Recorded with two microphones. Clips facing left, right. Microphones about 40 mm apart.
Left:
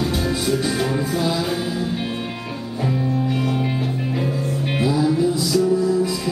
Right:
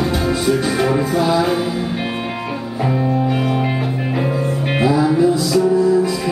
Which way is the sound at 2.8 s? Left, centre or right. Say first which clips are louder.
Right 4 dB; right.